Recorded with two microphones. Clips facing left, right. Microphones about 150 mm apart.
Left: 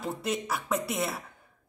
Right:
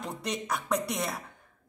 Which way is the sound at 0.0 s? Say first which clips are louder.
Left 3 dB; 5° left (ahead or behind).